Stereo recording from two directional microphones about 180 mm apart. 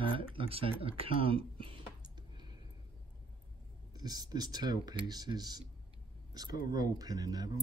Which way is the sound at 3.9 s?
20° right (ahead or behind).